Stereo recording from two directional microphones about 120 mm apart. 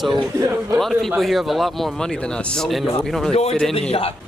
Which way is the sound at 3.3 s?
55° left (ahead or behind).